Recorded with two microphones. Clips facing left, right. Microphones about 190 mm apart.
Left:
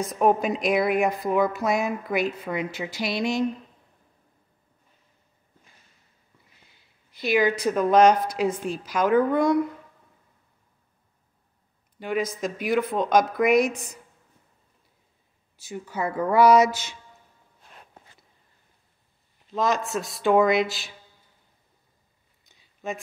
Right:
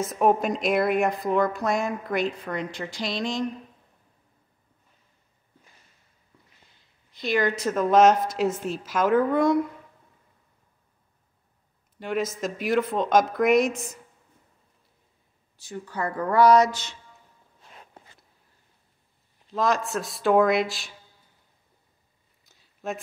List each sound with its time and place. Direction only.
0.0 s speech: centre (ahead or behind)
7.2 s speech: 5° left (ahead or behind)
12.0 s speech: centre (ahead or behind)
15.7 s speech: 15° left (ahead or behind)
19.5 s speech: centre (ahead or behind)
22.5 s a sound: centre (ahead or behind)